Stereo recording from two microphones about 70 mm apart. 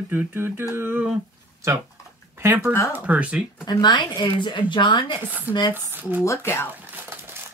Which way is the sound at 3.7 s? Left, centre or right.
Left.